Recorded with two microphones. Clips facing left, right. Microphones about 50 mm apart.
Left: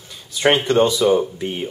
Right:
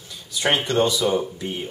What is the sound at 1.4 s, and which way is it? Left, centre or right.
Speech, left.